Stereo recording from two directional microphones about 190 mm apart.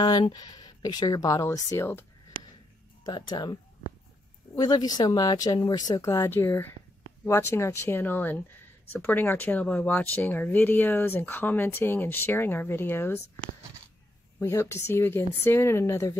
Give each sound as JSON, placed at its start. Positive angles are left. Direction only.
{"t": 0.0, "sound": "speech", "side_deg": 20}
{"t": 3.1, "sound": "speech", "side_deg": 25}
{"t": 4.6, "sound": "speech", "side_deg": 20}
{"t": 14.4, "sound": "speech", "side_deg": 15}